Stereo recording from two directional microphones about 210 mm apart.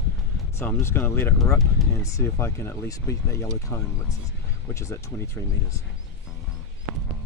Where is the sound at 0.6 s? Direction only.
10° left (ahead or behind).